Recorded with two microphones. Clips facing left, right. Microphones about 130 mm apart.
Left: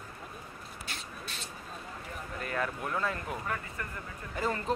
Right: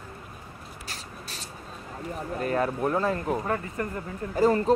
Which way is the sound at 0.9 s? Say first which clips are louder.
Right 2 dB; 35° right (ahead or behind).